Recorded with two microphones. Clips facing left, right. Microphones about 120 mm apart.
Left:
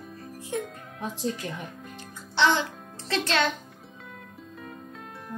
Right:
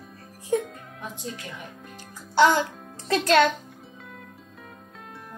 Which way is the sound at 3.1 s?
50° right (ahead or behind).